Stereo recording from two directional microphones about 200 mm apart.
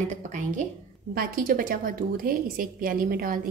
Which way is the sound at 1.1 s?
45° right (ahead or behind).